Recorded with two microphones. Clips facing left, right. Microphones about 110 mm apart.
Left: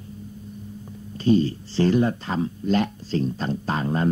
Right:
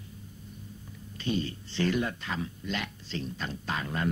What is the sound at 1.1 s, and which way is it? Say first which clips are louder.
Speech: left 12 dB; 35° left (ahead or behind).